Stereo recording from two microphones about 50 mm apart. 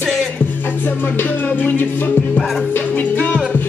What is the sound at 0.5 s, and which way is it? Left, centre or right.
Music, left.